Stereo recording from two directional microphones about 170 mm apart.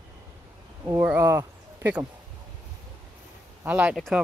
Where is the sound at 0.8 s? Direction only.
15° right (ahead or behind).